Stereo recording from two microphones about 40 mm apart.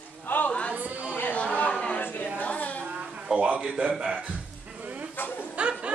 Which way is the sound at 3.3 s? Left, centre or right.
Right.